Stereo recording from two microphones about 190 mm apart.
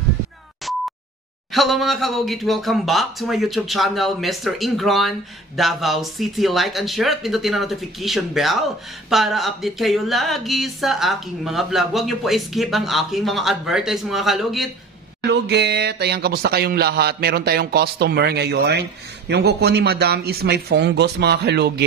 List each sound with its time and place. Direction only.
0.7 s a sound: centre (ahead or behind)
1.5 s speech: centre (ahead or behind)
15.2 s speech: 60° right (ahead or behind)